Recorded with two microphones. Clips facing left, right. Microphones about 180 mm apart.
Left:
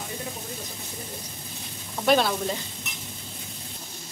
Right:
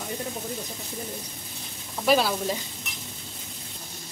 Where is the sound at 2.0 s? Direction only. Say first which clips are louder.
Even; 5° right (ahead or behind).